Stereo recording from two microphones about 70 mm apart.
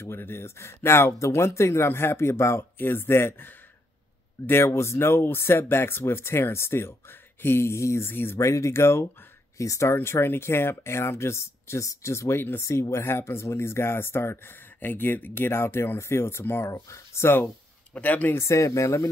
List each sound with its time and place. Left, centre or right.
0.0 s speech: left
9.9 s speech: left
17.9 s speech: left
18.4 s speech: left